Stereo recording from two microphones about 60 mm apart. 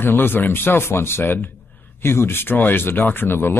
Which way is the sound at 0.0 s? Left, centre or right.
Left.